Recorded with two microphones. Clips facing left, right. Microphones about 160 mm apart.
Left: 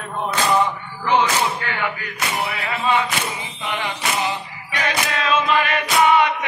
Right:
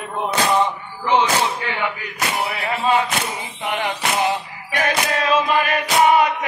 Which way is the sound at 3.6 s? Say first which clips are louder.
Right 3 dB; 50° right (ahead or behind).